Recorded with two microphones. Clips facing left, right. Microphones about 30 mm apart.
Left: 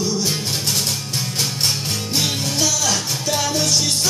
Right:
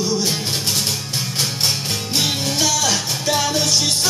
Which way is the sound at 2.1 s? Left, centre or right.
Centre.